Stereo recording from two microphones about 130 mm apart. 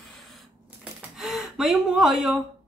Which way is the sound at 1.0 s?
5° right (ahead or behind).